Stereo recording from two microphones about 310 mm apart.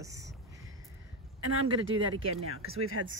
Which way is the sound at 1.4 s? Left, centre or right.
Right.